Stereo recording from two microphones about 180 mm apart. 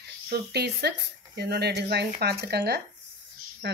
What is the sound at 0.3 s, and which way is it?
Speech, 65° right (ahead or behind).